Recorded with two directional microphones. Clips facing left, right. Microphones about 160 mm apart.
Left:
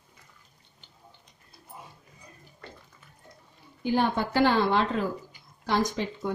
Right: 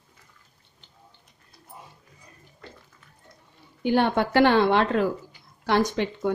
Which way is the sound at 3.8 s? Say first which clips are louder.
Right 4 dB; 70° right (ahead or behind).